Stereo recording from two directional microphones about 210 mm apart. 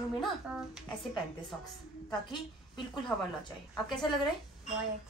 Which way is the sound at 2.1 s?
20° left (ahead or behind).